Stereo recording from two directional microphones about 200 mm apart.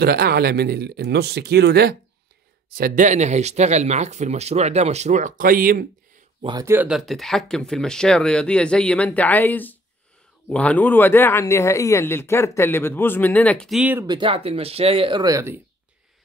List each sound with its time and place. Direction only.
0.0 s speech: 50° right (ahead or behind)
6.4 s speech: 15° right (ahead or behind)
14.0 s speech: 25° right (ahead or behind)